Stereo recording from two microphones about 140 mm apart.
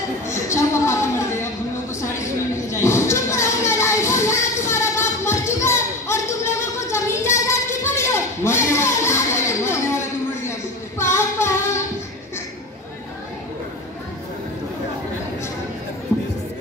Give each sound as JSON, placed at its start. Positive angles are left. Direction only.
{"t": 0.3, "sound": "a sound", "side_deg": 20}
{"t": 2.7, "sound": "children playing", "side_deg": 20}
{"t": 11.0, "sound": "singing", "side_deg": 20}